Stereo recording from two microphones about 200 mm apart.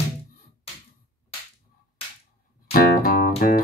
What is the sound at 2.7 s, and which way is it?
Music, 45° left (ahead or behind).